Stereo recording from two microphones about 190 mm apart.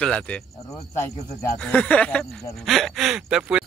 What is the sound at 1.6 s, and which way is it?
Speech, 5° left (ahead or behind).